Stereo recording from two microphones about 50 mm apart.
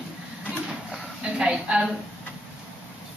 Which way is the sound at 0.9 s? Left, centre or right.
Centre.